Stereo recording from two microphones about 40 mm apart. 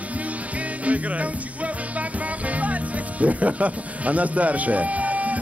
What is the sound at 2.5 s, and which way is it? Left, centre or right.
Speech, right.